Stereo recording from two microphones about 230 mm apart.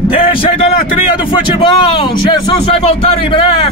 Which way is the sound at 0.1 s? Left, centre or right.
Left.